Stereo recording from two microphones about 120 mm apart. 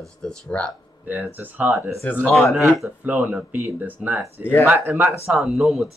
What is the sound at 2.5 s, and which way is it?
Speech, 15° right (ahead or behind).